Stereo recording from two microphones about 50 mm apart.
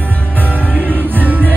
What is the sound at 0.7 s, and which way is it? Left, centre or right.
Music, right.